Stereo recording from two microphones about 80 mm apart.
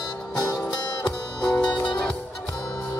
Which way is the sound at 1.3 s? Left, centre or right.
Centre.